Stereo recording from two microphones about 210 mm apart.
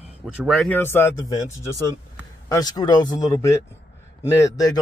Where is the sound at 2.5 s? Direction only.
20° left (ahead or behind).